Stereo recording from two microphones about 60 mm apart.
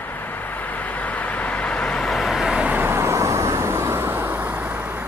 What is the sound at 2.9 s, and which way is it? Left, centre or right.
Vehicle, right.